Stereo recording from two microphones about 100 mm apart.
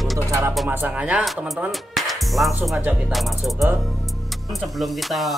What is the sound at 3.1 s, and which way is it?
Speech, centre (ahead or behind).